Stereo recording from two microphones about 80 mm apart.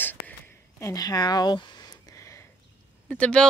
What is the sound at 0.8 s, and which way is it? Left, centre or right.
Speech, left.